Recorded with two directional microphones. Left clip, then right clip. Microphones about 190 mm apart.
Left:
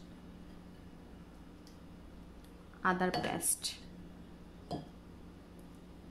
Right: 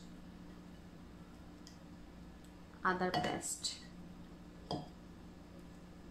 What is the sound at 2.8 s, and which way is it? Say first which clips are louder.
Speech: left 2 dB; 40° left (ahead or behind).